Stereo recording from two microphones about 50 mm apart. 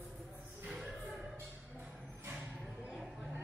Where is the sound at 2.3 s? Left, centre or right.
Right.